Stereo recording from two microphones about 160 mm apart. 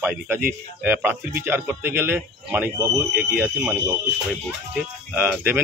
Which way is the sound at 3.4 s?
10° right (ahead or behind).